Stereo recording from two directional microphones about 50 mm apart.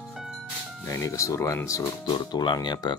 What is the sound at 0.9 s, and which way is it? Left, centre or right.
Speech, left.